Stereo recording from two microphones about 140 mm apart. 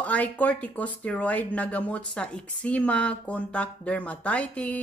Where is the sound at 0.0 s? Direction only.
10° left (ahead or behind).